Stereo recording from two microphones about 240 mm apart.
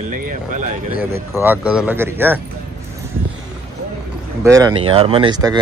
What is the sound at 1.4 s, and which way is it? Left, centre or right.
Speech, centre.